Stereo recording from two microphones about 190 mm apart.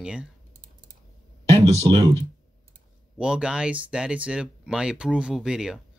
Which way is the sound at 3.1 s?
5° right (ahead or behind).